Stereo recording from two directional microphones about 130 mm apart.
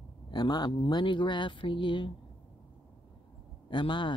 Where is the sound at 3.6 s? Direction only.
35° left (ahead or behind).